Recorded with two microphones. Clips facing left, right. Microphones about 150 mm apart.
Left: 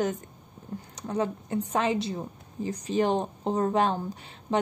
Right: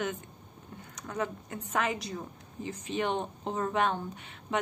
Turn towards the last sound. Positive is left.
turn(degrees=35)  # may be behind; listen again after turning